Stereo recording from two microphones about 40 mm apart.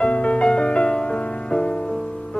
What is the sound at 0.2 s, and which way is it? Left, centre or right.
Music, left.